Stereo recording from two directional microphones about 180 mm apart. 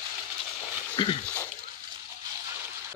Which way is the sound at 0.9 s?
30° left (ahead or behind).